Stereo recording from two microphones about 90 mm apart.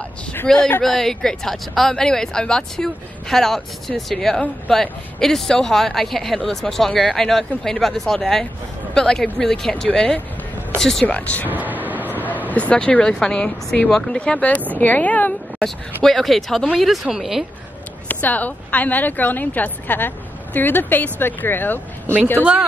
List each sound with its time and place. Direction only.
0.5 s speech: 5° left (ahead or behind)
11.1 s speech: 15° left (ahead or behind)
11.5 s vehicle: 20° right (ahead or behind)
12.4 s a woman's voice: 15° left (ahead or behind)
15.6 s speech: 5° left (ahead or behind)
18.0 s a woman's voice: 20° left (ahead or behind)